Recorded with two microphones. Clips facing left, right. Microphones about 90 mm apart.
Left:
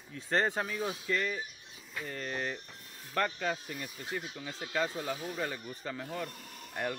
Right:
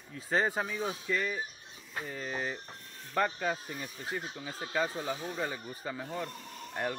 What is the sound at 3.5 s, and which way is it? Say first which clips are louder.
Speech: right 1 dB; 40° right (ahead or behind).